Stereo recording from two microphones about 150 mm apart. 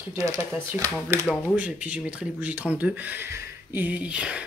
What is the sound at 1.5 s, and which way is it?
Speech, 10° right (ahead or behind).